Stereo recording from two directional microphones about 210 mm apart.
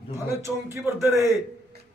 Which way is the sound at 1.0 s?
15° right (ahead or behind).